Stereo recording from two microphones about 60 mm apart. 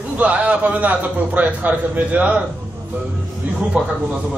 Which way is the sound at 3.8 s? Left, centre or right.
Right.